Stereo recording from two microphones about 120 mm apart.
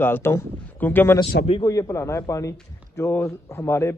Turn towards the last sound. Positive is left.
turn(degrees=20)  # may be behind; listen again after turning